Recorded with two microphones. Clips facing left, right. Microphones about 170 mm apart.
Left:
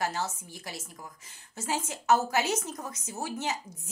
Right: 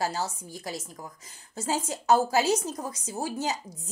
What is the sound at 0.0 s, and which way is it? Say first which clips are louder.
A woman's voice: right 2 dB; 35° right (ahead or behind).